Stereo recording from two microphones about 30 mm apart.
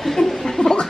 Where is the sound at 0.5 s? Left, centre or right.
Left.